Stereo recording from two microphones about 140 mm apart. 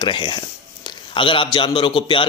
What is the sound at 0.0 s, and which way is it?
A man's voice, 35° left (ahead or behind).